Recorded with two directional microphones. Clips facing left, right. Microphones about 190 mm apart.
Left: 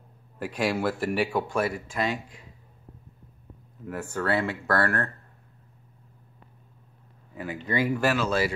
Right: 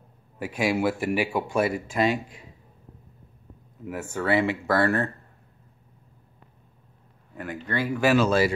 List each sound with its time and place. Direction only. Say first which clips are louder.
0.4 s speech: right 2 dB; 10° right (ahead or behind)
1.5 s speech: right 3 dB; 20° right (ahead or behind)
3.8 s speech: right 1 dB; 10° right (ahead or behind)
7.3 s speech: left 1 dB; 5° left (ahead or behind)
8.1 s speech: right 5 dB; 30° right (ahead or behind)